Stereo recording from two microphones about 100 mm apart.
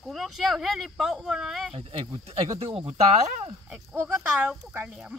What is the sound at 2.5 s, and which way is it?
Speech, 80° right.